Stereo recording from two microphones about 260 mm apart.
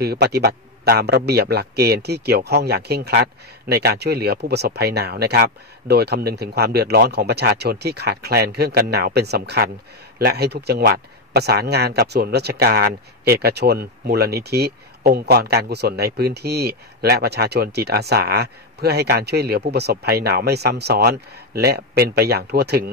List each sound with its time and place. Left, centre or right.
0.0 s speech: right